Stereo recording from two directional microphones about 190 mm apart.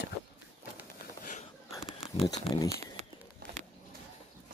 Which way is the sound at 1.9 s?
30° left (ahead or behind).